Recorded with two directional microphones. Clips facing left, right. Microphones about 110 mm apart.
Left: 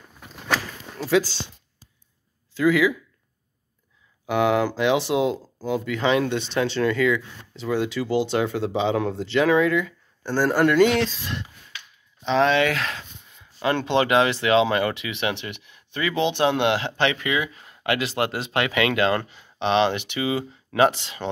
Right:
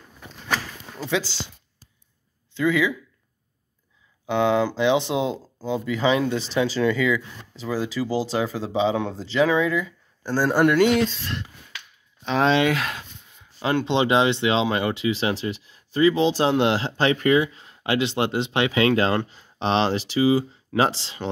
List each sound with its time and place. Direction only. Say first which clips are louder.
0.9 s speech: left 5 dB; centre (ahead or behind)
2.5 s speech: left 2 dB; 5° left (ahead or behind)
4.3 s speech: even; 5° left (ahead or behind)
8.0 s speech: even; 30° right (ahead or behind)
8.3 s speech: left 2 dB; centre (ahead or behind)
12.4 s speech: right 4 dB; 25° right (ahead or behind)
12.7 s speech: right 1 dB; 10° right (ahead or behind)
13.8 s speech: even; 25° right (ahead or behind)
17.6 s speech: right 1 dB; 25° right (ahead or behind)